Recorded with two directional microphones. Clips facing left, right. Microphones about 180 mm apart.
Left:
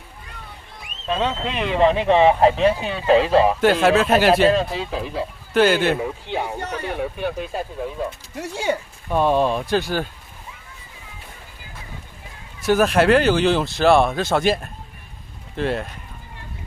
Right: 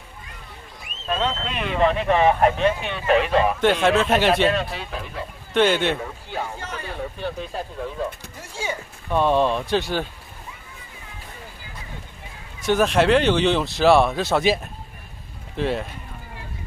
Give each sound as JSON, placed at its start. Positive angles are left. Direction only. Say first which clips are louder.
{"t": 1.1, "sound": "speech", "louder": "left 2 dB", "side_deg": 15}
{"t": 1.5, "sound": "speech", "louder": "left 4 dB", "side_deg": 30}
{"t": 3.6, "sound": "speech", "louder": "left 2 dB", "side_deg": 5}
{"t": 4.5, "sound": "speech", "louder": "left 5 dB", "side_deg": 30}
{"t": 5.5, "sound": "speech", "louder": "left 2 dB", "side_deg": 5}
{"t": 6.2, "sound": "speech", "louder": "left 4 dB", "side_deg": 20}
{"t": 6.6, "sound": "speech", "louder": "left 5 dB", "side_deg": 70}
{"t": 6.9, "sound": "speech", "louder": "left 3 dB", "side_deg": 15}
{"t": 8.4, "sound": "speech", "louder": "left 8 dB", "side_deg": 70}
{"t": 9.1, "sound": "speech", "louder": "left 1 dB", "side_deg": 5}
{"t": 12.6, "sound": "speech", "louder": "left 2 dB", "side_deg": 5}